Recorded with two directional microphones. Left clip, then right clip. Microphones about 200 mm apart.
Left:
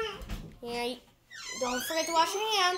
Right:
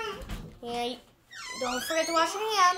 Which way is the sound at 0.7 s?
10° left (ahead or behind).